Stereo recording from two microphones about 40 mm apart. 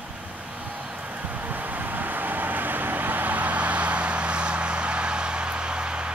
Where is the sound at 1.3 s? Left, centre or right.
Right.